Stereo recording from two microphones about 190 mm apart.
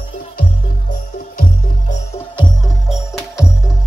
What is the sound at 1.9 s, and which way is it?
Music, 30° left (ahead or behind).